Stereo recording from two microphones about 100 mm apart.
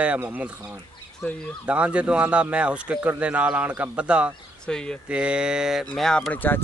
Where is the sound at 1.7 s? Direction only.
10° right (ahead or behind).